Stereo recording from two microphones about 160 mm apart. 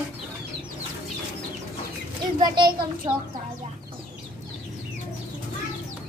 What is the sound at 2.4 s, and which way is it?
Speech, 30° right (ahead or behind).